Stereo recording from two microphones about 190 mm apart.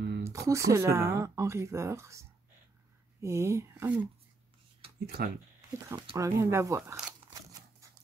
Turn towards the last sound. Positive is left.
turn(degrees=-15)  # may be behind; listen again after turning